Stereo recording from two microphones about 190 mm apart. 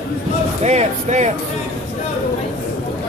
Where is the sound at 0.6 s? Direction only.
35° right (ahead or behind).